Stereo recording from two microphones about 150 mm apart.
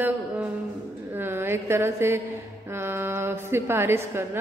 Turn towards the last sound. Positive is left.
turn(degrees=-15)  # may be behind; listen again after turning